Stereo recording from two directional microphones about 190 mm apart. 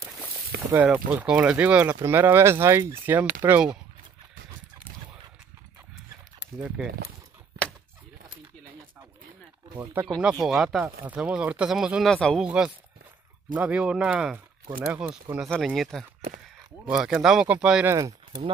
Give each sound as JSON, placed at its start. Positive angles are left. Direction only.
{"t": 0.7, "sound": "speech", "side_deg": -5}
{"t": 9.8, "sound": "speech", "side_deg": -10}
{"t": 17.9, "sound": "speech", "side_deg": -20}